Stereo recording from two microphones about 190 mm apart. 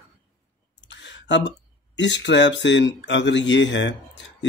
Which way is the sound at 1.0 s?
70° left (ahead or behind).